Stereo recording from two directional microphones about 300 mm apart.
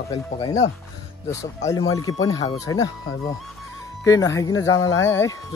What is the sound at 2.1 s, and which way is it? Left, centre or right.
Speech, centre.